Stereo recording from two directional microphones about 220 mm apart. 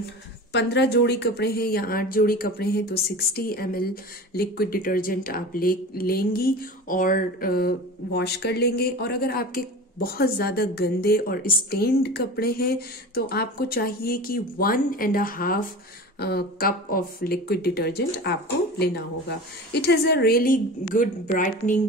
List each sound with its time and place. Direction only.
0.5 s speech: 50° left (ahead or behind)